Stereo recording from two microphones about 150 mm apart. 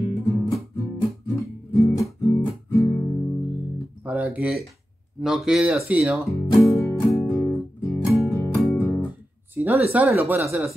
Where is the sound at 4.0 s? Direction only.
10° right (ahead or behind).